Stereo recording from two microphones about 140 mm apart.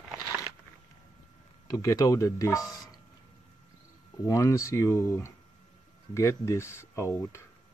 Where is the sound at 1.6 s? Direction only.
25° left (ahead or behind).